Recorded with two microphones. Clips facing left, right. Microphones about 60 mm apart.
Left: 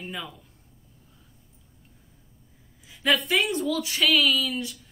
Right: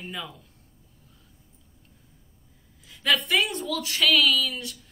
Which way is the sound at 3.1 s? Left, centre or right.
Centre.